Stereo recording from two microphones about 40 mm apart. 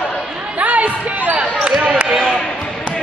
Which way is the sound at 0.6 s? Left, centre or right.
Right.